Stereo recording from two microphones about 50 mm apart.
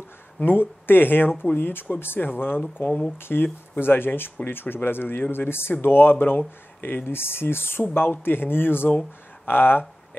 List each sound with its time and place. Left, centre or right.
0.4 s speech: left